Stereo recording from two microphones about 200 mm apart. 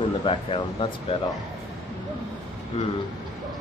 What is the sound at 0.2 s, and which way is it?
Speech, 25° left (ahead or behind).